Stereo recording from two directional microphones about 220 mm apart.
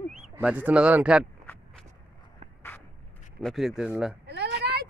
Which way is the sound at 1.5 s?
10° left (ahead or behind).